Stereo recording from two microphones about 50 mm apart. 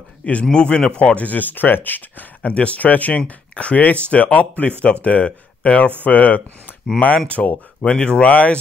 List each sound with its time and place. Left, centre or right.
0.2 s a man's voice: left
7.8 s speech: centre